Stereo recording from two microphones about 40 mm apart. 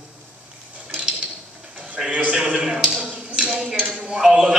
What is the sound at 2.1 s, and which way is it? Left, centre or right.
Speech, right.